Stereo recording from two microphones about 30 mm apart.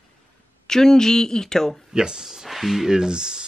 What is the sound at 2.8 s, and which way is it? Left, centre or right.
Speech, right.